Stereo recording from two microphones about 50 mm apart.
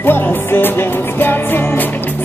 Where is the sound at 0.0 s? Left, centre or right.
Left.